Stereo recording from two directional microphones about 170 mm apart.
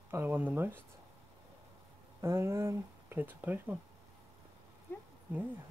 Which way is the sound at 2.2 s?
15° right (ahead or behind).